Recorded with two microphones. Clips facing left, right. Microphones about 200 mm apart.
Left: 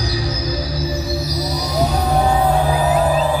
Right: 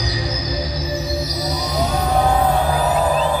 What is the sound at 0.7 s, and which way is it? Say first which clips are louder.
Music: left 1 dB; 20° right (ahead or behind).